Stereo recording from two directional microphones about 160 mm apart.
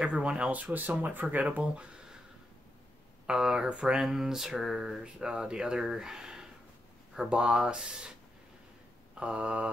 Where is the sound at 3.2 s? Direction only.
5° right (ahead or behind).